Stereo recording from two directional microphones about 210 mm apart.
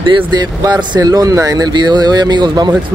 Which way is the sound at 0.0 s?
20° right (ahead or behind).